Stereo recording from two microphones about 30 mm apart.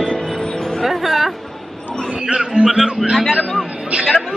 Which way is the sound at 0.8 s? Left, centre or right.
Centre.